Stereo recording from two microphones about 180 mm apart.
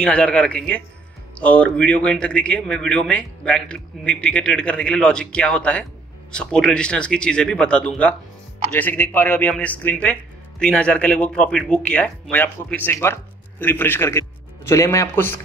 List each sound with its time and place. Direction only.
0.0 s a man's voice: 5° left (ahead or behind)